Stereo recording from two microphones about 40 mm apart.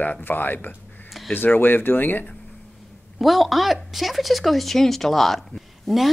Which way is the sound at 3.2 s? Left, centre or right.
Centre.